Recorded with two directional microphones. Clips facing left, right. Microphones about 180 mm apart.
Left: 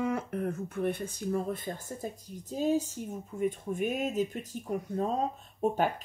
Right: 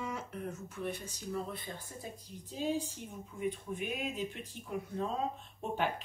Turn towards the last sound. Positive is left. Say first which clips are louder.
# left 7 dB
turn(degrees=40)  # may be behind; listen again after turning